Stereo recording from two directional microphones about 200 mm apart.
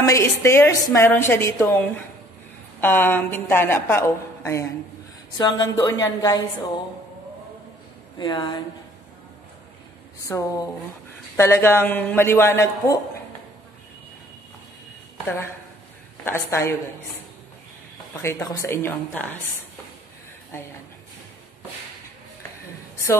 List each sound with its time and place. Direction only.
0.0 s a man's voice: 15° left (ahead or behind)
8.2 s a woman's voice: 20° left (ahead or behind)
10.2 s a man's voice: 15° left (ahead or behind)
16.3 s a man's voice: 10° left (ahead or behind)
18.1 s a man's voice: 15° left (ahead or behind)